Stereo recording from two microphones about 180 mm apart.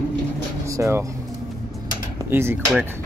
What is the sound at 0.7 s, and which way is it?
Speech, 15° right (ahead or behind).